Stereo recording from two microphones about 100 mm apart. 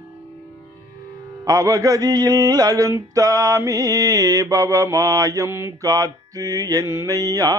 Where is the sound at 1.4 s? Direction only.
35° right (ahead or behind).